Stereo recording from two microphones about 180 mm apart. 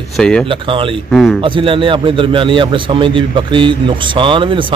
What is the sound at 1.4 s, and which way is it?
A man's voice, 30° right (ahead or behind).